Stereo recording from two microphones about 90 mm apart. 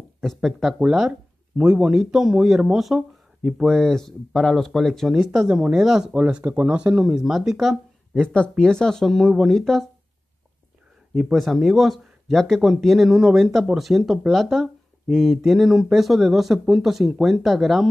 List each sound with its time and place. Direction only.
0.2 s speech: centre (ahead or behind)
8.3 s speech: 10° left (ahead or behind)
11.1 s speech: centre (ahead or behind)